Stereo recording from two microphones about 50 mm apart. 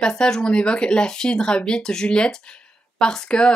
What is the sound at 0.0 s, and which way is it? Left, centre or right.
Speech, centre.